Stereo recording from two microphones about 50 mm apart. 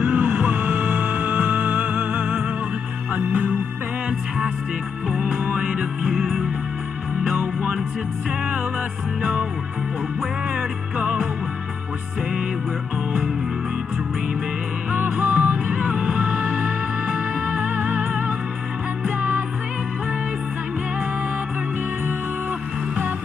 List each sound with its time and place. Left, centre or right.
0.0 s music: right
5.0 s music: centre
9.2 s music: right
10.5 s music: right
14.9 s music: right